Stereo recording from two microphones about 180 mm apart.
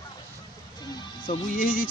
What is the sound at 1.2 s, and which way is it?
Speech, 50° left (ahead or behind).